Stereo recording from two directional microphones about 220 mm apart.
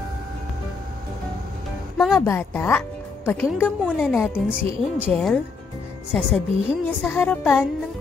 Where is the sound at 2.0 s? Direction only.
Centre (ahead or behind).